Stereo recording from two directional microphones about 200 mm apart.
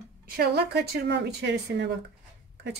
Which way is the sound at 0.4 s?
55° right (ahead or behind).